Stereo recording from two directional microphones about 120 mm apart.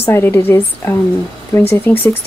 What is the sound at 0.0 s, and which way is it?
A woman's voice, 15° left (ahead or behind).